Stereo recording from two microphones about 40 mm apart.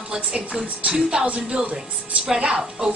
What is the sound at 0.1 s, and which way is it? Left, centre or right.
A woman's voice, right.